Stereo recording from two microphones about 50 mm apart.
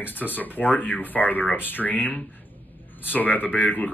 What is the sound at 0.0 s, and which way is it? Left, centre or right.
Speech, left.